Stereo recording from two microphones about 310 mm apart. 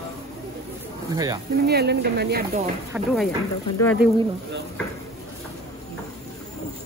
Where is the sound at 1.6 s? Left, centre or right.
Right.